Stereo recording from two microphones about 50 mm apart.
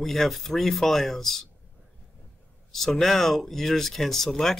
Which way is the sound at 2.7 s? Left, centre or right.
Centre.